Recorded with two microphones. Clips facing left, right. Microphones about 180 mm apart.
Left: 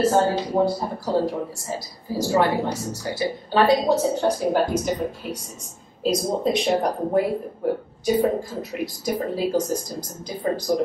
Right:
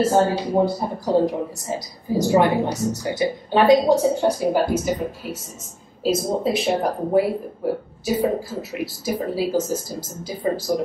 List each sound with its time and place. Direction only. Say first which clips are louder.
0.6 s a woman's voice: right 3 dB; 20° right (ahead or behind); by 10.8 s 5° right (ahead or behind)